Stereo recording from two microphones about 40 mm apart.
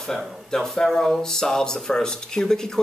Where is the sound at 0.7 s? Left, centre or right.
Centre.